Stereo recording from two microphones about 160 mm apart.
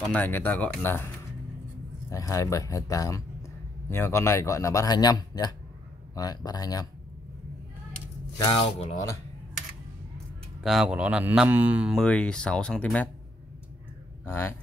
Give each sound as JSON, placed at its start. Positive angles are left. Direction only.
{"t": 0.1, "sound": "speech", "side_deg": 10}
{"t": 8.5, "sound": "speech", "side_deg": 40}
{"t": 10.6, "sound": "a man's voice", "side_deg": -5}
{"t": 12.0, "sound": "speech", "side_deg": 5}
{"t": 14.2, "sound": "speech", "side_deg": 15}